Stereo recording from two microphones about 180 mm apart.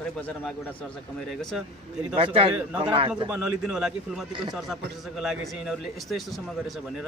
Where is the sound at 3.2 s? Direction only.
10° right (ahead or behind).